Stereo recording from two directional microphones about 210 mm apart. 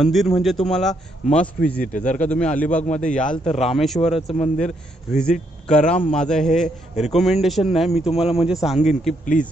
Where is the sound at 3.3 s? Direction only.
30° left (ahead or behind).